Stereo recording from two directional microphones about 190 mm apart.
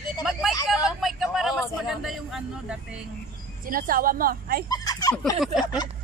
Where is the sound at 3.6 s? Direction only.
50° right (ahead or behind).